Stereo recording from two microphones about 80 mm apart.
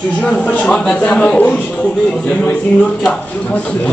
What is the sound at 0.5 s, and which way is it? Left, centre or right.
A man's voice, centre.